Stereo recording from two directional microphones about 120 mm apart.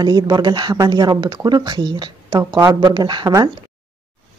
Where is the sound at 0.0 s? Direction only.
35° right (ahead or behind).